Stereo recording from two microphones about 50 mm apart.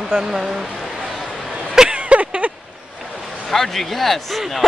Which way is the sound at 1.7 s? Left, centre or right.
Centre.